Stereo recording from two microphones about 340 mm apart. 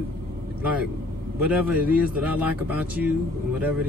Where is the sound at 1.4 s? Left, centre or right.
Centre.